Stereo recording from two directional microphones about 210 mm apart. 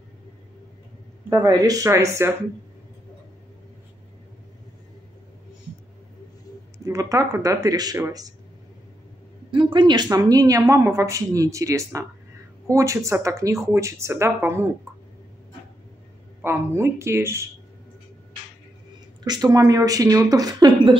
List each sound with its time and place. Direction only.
1.3 s speech: 15° right (ahead or behind)
6.8 s speech: 15° right (ahead or behind)
9.5 s speech: 20° right (ahead or behind)
16.3 s speech: 10° right (ahead or behind)
19.2 s speech: 20° right (ahead or behind)